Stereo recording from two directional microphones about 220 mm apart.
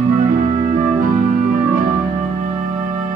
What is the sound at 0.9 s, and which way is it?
Music, 40° right (ahead or behind).